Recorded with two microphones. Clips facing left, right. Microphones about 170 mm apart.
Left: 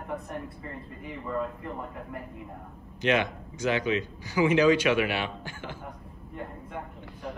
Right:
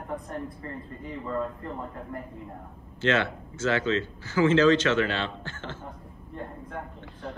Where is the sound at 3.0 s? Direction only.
15° left (ahead or behind).